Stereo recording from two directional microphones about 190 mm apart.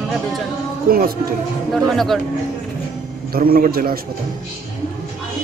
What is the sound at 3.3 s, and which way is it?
Speech, 50° right (ahead or behind).